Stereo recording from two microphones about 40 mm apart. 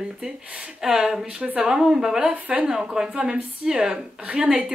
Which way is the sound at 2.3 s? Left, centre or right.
Right.